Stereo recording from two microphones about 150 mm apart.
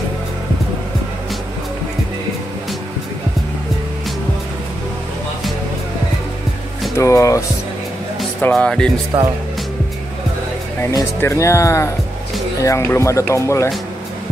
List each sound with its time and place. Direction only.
7.0 s speech: 20° left (ahead or behind)
8.4 s speech: 10° left (ahead or behind)
9.1 s speech: 20° right (ahead or behind)
10.8 s speech: 20° left (ahead or behind)